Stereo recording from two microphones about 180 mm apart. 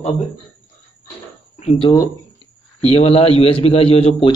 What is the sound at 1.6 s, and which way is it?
A man's voice, 35° left (ahead or behind).